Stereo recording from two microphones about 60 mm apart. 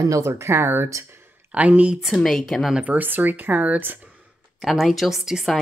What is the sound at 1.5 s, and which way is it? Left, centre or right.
Speech, right.